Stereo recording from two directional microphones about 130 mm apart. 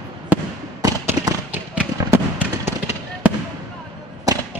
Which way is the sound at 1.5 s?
10° right (ahead or behind).